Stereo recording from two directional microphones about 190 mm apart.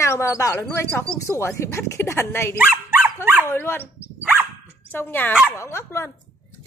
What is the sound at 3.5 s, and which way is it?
Speech, 10° left (ahead or behind).